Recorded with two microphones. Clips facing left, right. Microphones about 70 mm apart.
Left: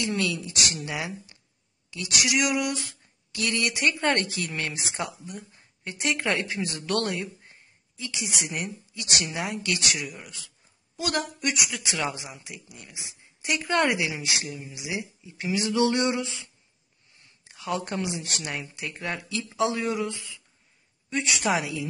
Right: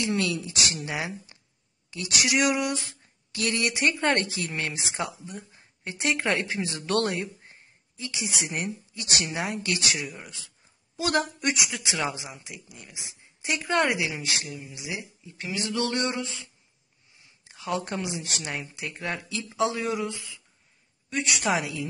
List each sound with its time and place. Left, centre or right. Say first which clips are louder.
0.0 s speech: right 1 dB; right
1.9 s a sound: right 1 dB; right
3.9 s speech: even; centre
4.9 s speech: right 1 dB; centre
5.5 s a woman's voice: right 1 dB; right
11.9 s speech: even; centre
13.6 s speech: even; centre
17.5 s speech: even; centre